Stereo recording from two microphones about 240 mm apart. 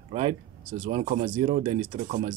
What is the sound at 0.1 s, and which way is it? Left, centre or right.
Speech, right.